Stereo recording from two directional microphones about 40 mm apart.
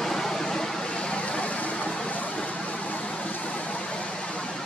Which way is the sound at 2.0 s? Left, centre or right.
Left.